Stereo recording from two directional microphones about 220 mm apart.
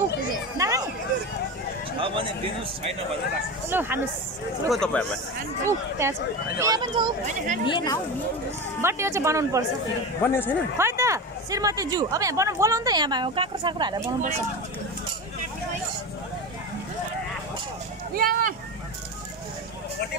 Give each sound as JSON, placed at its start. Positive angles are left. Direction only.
{"t": 0.6, "sound": "chatter", "side_deg": -15}
{"t": 2.0, "sound": "speech", "side_deg": -25}
{"t": 3.7, "sound": "speech", "side_deg": -10}
{"t": 4.6, "sound": "speech", "side_deg": 0}
{"t": 5.7, "sound": "speech", "side_deg": -10}
{"t": 7.2, "sound": "speech", "side_deg": -35}
{"t": 7.6, "sound": "speech", "side_deg": 20}
{"t": 8.8, "sound": "speech", "side_deg": -10}
{"t": 10.2, "sound": "speech", "side_deg": 10}
{"t": 10.8, "sound": "speech", "side_deg": -10}
{"t": 18.1, "sound": "a sound", "side_deg": -40}